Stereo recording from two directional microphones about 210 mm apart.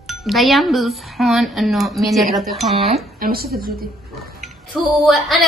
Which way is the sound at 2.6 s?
30° right (ahead or behind).